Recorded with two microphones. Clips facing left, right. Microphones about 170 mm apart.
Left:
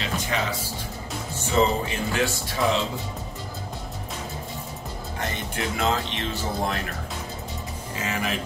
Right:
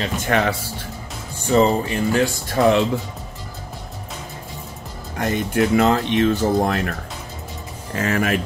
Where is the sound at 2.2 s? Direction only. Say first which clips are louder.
Right 7 dB; 50° right (ahead or behind).